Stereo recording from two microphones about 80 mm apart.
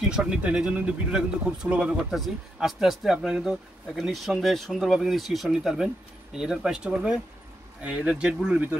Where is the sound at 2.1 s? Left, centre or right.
Centre.